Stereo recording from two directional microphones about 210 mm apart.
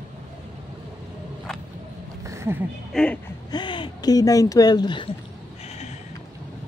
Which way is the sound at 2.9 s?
5° left (ahead or behind).